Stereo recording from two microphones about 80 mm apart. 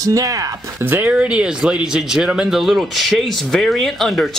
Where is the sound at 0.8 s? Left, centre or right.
Right.